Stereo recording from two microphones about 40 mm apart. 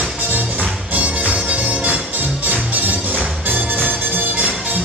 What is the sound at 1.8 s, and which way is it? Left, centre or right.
Music, right.